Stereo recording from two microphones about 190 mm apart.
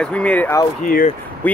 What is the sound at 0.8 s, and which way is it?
Speech, 45° left (ahead or behind).